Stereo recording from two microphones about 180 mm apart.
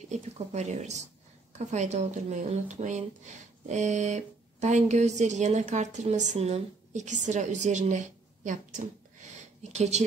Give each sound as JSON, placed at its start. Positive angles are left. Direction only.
{"t": 0.1, "sound": "speech", "side_deg": -40}